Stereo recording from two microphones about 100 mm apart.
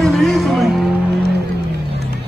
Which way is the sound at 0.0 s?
Centre (ahead or behind).